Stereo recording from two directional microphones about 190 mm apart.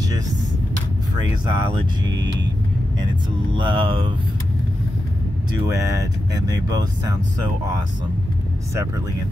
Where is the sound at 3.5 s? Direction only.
25° right (ahead or behind).